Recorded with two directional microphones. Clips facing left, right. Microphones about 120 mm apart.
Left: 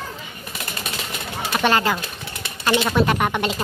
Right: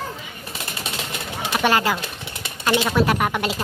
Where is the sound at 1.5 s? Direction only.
10° right (ahead or behind).